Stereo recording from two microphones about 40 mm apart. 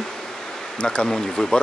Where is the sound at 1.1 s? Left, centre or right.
Centre.